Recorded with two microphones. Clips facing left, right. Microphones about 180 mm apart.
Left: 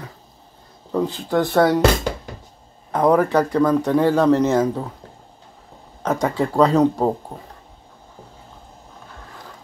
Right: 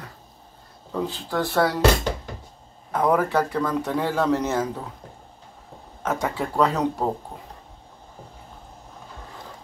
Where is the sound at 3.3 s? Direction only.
15° left (ahead or behind).